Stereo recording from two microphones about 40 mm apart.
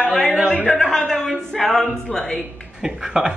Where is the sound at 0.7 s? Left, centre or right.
Centre.